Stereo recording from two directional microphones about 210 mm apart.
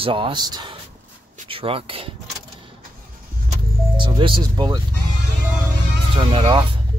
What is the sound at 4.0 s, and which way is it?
Speech, 25° right (ahead or behind).